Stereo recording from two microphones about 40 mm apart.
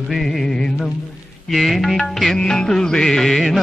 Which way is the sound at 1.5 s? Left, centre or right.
Centre.